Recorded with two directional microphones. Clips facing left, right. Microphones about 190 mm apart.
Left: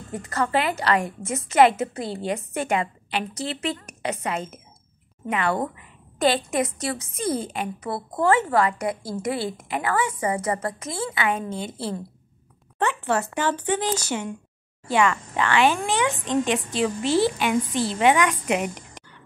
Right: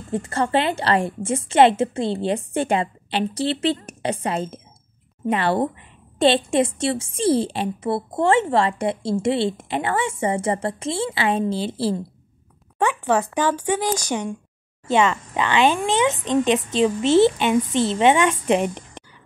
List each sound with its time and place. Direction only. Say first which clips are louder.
0.1 s a woman's voice: right 3 dB; 30° right (ahead or behind)
12.7 s a woman's voice: right 4 dB; 15° right (ahead or behind)